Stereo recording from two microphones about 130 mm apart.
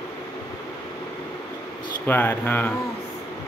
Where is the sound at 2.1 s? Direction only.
15° left (ahead or behind).